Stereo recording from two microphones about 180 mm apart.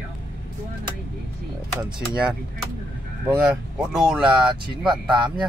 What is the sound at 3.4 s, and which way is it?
Speech, 5° right (ahead or behind).